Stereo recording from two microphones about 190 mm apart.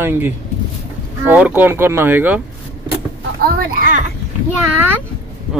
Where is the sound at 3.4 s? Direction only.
50° right (ahead or behind).